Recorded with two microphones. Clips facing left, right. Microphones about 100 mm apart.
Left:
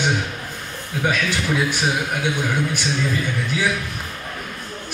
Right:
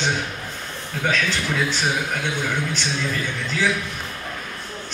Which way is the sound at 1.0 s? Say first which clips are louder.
Left 1 dB; 10° left (ahead or behind).